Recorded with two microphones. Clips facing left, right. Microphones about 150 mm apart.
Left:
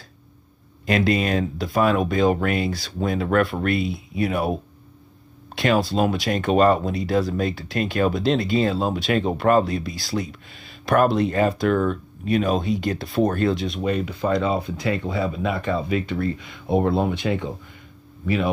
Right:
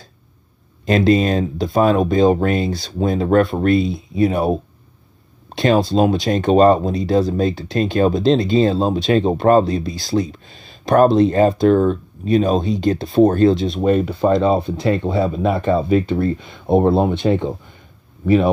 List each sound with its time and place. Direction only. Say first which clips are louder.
0.8 s speech: right 6 dB; 30° right (ahead or behind)